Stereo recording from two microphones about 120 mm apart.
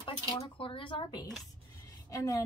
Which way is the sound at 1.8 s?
30° left (ahead or behind).